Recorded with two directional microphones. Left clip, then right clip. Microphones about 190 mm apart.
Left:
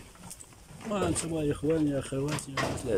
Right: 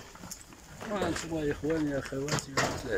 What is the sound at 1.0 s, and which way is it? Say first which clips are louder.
Speech: left 2 dB; 10° left (ahead or behind).